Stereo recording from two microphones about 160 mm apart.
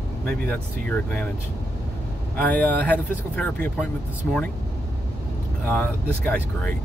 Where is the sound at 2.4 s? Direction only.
10° left (ahead or behind).